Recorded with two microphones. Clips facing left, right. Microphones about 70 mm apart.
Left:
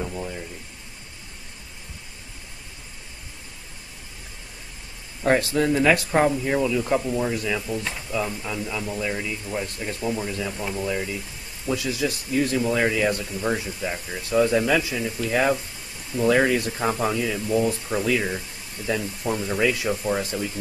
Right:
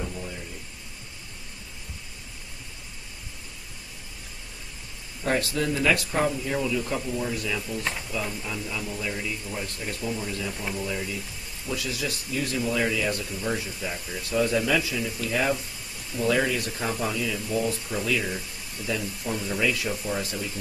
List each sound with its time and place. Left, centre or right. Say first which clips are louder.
5.5 s a man's voice: left 5 dB; left